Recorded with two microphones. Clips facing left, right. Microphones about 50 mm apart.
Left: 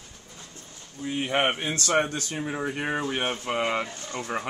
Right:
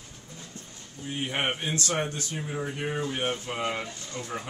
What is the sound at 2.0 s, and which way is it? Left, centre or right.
Speech, left.